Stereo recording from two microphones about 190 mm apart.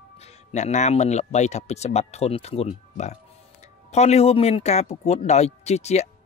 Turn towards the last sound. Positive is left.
turn(degrees=35)  # may be behind; listen again after turning